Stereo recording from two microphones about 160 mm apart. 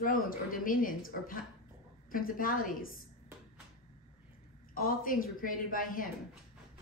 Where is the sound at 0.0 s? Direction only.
60° left (ahead or behind).